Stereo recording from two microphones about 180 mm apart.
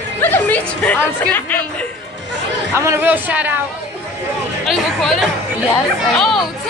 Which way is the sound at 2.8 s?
15° right (ahead or behind).